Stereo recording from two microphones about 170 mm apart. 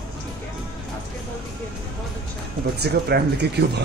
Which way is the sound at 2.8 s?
75° right (ahead or behind).